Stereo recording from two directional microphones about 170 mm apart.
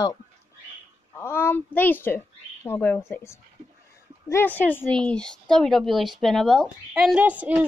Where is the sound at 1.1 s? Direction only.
15° left (ahead or behind).